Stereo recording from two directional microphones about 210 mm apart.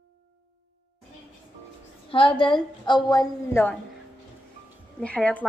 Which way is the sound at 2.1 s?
25° left (ahead or behind).